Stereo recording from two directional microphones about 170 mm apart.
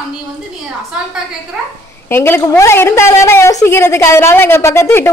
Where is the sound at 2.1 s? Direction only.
15° left (ahead or behind).